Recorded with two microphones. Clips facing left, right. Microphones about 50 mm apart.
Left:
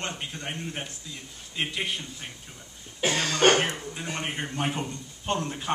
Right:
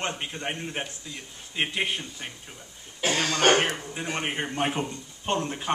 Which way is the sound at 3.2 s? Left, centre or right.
Right.